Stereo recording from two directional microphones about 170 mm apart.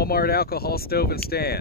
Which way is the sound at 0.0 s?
65° left (ahead or behind).